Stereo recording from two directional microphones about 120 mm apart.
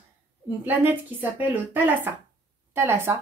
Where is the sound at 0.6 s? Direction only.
15° right (ahead or behind).